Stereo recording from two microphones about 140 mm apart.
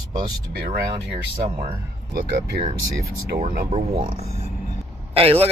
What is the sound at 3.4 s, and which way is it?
Speech, 75° right (ahead or behind).